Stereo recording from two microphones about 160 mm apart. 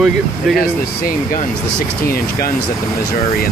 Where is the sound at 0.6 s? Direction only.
65° left (ahead or behind).